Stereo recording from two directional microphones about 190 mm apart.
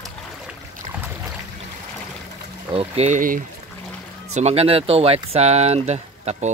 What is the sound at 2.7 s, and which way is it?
Speech, 35° right (ahead or behind).